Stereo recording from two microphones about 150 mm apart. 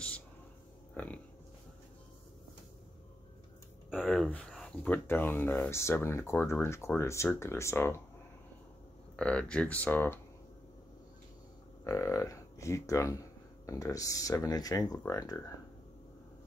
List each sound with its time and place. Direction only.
0.9 s a sound: 10° left (ahead or behind)
3.9 s speech: centre (ahead or behind); by 8.0 s 15° left (ahead or behind)
9.1 s speech: 5° left (ahead or behind)
11.8 s speech: 20° left (ahead or behind)